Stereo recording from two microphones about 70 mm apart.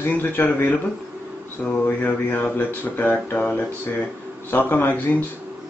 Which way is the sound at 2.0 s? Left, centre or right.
Left.